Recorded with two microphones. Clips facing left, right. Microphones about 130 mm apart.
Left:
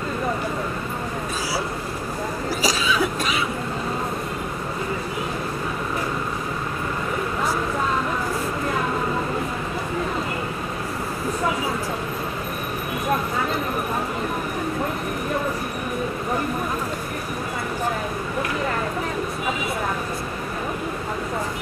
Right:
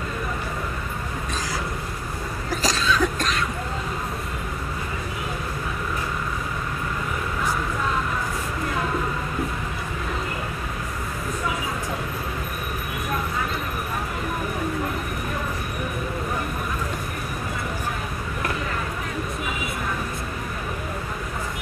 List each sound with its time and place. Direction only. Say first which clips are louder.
2.6 s cough: even; 5° left (ahead or behind)